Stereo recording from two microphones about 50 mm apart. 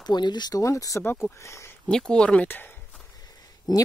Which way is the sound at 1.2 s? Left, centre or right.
Left.